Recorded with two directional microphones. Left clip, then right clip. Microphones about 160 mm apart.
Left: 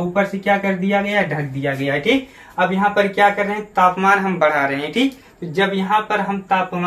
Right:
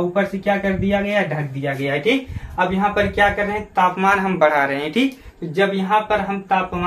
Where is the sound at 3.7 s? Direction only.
25° right (ahead or behind).